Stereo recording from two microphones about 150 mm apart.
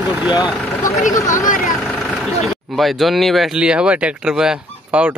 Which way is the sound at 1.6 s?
Centre (ahead or behind).